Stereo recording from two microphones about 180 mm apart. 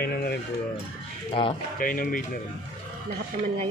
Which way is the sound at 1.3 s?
30° left (ahead or behind).